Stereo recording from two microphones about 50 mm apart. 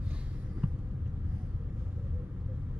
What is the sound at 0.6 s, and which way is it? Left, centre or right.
Vehicle, right.